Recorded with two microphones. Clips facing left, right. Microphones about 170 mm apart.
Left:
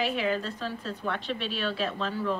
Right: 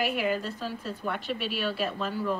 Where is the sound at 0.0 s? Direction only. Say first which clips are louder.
Even; 5° right (ahead or behind).